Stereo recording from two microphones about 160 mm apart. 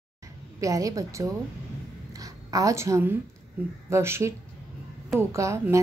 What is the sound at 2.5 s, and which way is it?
Speech, 20° right (ahead or behind).